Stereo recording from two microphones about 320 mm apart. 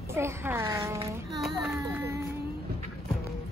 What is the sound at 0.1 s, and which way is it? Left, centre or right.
Child singing, centre.